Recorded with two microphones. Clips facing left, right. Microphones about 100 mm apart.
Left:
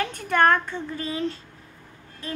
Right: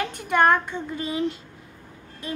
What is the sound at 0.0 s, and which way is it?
A child's voice, 15° right (ahead or behind).